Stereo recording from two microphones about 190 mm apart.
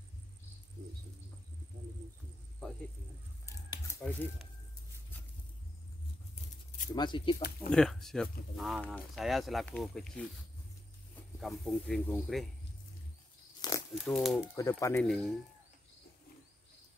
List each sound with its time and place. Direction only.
3.4 s a sound: 15° left (ahead or behind)
7.0 s speech: 25° left (ahead or behind)
7.7 s speech: centre (ahead or behind)
11.3 s speech: centre (ahead or behind)
13.6 s a sound: 15° left (ahead or behind)
14.1 s speech: centre (ahead or behind)
14.6 s speech: 15° left (ahead or behind)
15.0 s speech: centre (ahead or behind)